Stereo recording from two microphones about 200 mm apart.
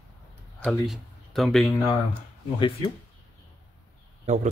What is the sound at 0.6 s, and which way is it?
Speech, centre (ahead or behind).